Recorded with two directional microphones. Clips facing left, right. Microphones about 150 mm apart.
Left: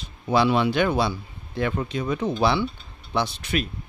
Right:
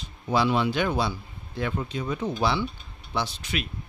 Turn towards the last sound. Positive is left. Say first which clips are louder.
# left 4 dB
turn(degrees=60)  # may be behind; listen again after turning